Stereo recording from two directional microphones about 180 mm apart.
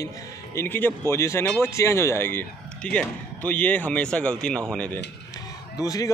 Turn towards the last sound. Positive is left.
turn(degrees=20)  # may be behind; listen again after turning